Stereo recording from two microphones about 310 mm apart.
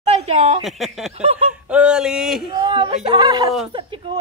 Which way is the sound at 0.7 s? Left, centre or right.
Centre.